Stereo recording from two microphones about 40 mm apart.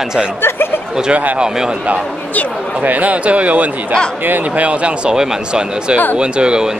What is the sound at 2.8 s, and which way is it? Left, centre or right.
Speech, right.